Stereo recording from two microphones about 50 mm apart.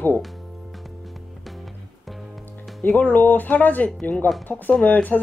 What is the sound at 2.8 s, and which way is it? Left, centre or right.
Speech, left.